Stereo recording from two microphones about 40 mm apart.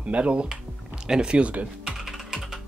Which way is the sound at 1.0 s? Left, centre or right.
Right.